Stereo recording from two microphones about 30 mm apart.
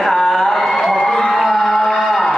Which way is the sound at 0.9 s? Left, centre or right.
Centre.